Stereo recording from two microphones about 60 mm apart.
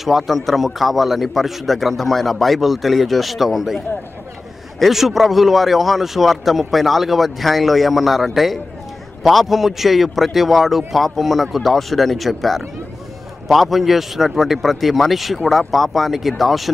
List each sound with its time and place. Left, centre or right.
0.0 s a man's voice: centre